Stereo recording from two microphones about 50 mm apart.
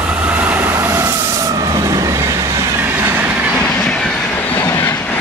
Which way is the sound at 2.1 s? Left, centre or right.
Right.